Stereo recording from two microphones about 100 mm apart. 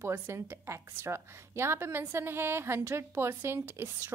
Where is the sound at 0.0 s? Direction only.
25° right (ahead or behind).